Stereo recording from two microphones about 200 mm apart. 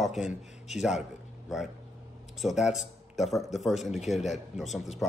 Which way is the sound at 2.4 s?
Centre (ahead or behind).